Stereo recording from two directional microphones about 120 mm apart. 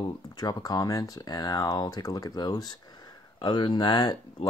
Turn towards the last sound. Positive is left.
turn(degrees=35)  # may be behind; listen again after turning